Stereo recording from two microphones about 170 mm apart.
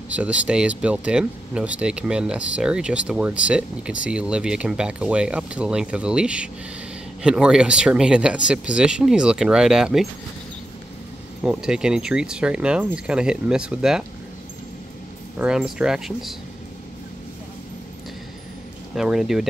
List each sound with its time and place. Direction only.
0.1 s speech: 10° right (ahead or behind)
11.4 s speech: 5° right (ahead or behind)
15.3 s speech: 5° right (ahead or behind)
18.9 s speech: centre (ahead or behind)